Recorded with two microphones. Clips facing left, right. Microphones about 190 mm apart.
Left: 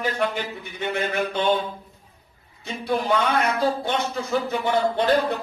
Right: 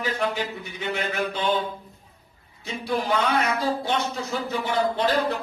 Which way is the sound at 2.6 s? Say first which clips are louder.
Left 2 dB; 55° left (ahead or behind).